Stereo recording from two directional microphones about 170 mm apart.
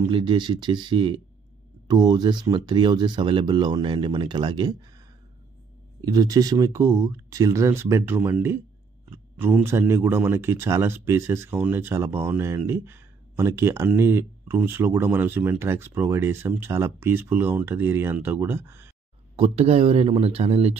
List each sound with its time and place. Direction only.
0.1 s speech: 30° right (ahead or behind)
5.9 s speech: 25° right (ahead or behind)
19.3 s speech: 35° right (ahead or behind)